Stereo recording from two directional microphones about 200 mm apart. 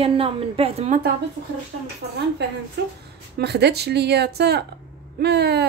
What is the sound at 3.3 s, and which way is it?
Speech, 55° right (ahead or behind).